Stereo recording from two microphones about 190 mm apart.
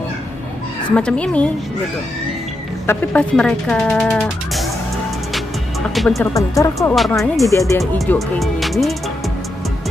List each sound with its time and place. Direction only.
0.9 s speech: 5° left (ahead or behind)
2.9 s speech: 5° left (ahead or behind)
5.9 s speech: centre (ahead or behind)
6.3 s speech: 15° left (ahead or behind)
7.0 s speech: centre (ahead or behind)
7.5 s speech: 15° left (ahead or behind)
7.8 s speech: centre (ahead or behind)